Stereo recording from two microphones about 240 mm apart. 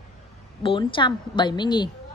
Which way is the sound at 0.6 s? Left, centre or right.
Left.